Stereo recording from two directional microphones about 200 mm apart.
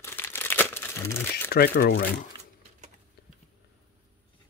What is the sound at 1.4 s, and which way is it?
Speech, 50° left (ahead or behind).